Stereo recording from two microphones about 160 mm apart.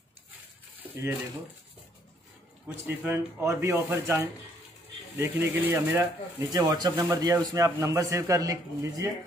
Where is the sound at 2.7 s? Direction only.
15° right (ahead or behind).